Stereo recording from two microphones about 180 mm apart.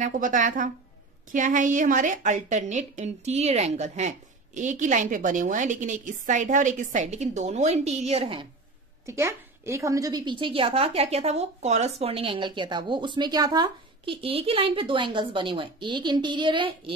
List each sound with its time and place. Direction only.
0.0 s a woman's voice: 45° right (ahead or behind); by 8.5 s 30° right (ahead or behind)
9.0 s a woman's voice: 15° right (ahead or behind)